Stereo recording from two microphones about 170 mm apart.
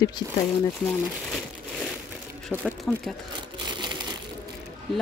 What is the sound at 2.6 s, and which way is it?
Speech, 5° left (ahead or behind).